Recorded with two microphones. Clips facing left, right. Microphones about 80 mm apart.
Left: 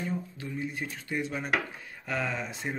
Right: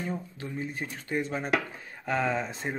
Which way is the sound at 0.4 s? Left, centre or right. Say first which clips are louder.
Even; right.